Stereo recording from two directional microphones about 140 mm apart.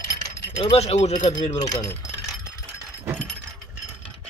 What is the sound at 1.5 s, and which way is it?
Speech, 25° left (ahead or behind).